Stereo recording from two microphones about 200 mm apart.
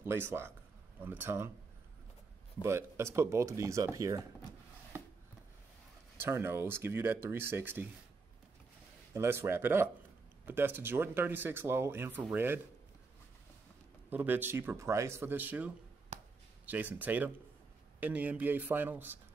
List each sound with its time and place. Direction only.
0.0 s speech: 10° right (ahead or behind)
2.6 s speech: 15° right (ahead or behind)
6.1 s speech: 10° right (ahead or behind)
9.1 s speech: 10° right (ahead or behind)
14.1 s speech: 10° right (ahead or behind)
16.1 s a sound: 35° right (ahead or behind)
16.6 s speech: 10° right (ahead or behind)